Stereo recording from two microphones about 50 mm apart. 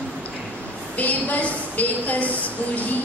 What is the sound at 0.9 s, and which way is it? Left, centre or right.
A woman's voice, left.